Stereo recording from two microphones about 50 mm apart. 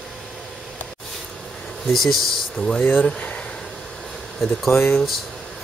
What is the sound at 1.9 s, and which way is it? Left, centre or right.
Speech, centre.